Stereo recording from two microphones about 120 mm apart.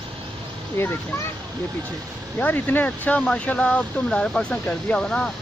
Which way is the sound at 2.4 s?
15° left (ahead or behind).